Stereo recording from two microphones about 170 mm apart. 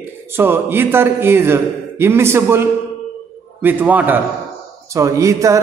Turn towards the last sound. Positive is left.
turn(degrees=-20)  # may be behind; listen again after turning